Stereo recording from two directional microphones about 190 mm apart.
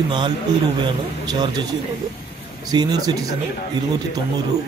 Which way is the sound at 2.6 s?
20° right (ahead or behind).